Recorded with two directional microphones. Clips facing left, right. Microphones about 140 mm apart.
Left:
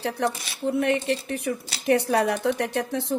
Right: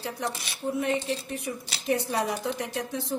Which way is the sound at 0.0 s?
65° left (ahead or behind).